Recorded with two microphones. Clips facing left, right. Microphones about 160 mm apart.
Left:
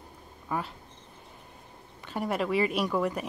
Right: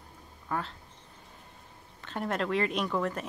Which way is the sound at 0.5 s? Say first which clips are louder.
Left 1 dB; 10° left (ahead or behind).